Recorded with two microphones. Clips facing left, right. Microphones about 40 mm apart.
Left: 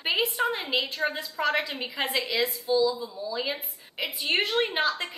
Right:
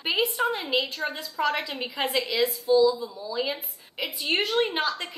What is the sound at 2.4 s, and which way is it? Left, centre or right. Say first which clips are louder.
Speech: right 4 dB; left.